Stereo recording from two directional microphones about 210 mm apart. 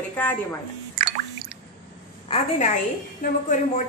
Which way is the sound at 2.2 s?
30° left (ahead or behind).